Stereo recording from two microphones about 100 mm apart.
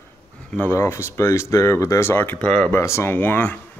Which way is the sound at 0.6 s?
25° left (ahead or behind).